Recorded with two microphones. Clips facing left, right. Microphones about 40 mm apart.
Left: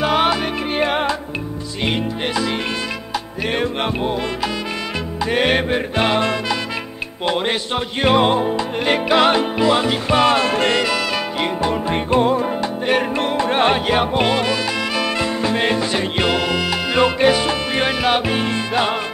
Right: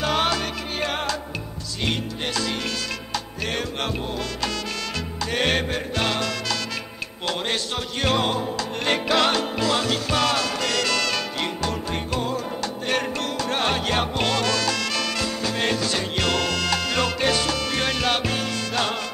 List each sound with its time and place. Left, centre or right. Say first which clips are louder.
0.0 s music: left 6 dB; centre; by 10.8 s left
10.8 s music: left 4 dB; centre